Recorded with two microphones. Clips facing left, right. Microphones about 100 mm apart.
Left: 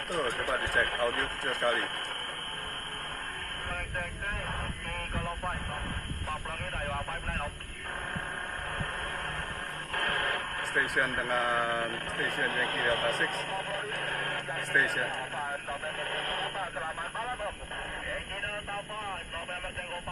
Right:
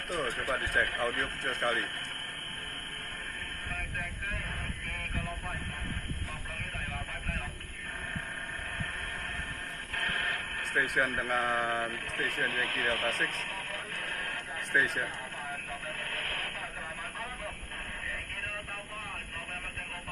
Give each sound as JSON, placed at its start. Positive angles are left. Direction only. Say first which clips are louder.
{"t": 0.1, "sound": "speech", "louder": "left 2 dB", "side_deg": 55}
{"t": 9.9, "sound": "radio", "louder": "left 4 dB", "side_deg": 45}
{"t": 11.2, "sound": "speech", "louder": "left 1 dB", "side_deg": 0}
{"t": 11.8, "sound": "speech", "louder": "left 2 dB", "side_deg": 45}
{"t": 16.0, "sound": "vehicle", "louder": "left 5 dB", "side_deg": 40}